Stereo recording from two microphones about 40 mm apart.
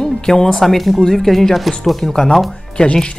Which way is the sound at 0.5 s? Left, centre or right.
Centre.